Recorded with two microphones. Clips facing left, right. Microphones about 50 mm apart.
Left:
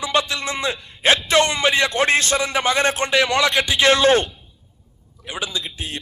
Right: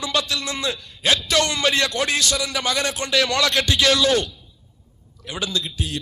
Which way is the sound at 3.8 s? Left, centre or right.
Left.